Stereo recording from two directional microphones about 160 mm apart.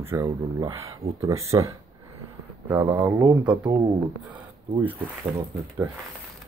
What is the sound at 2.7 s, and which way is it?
Speech, 10° right (ahead or behind).